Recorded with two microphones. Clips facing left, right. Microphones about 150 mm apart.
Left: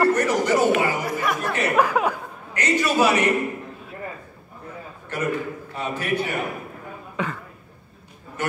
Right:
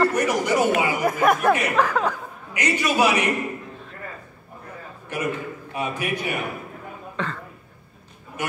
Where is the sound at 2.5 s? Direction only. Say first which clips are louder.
Left 1 dB; 10° right (ahead or behind).